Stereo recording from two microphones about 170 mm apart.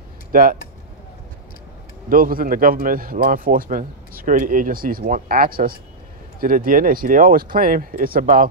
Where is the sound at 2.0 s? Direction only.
55° right (ahead or behind).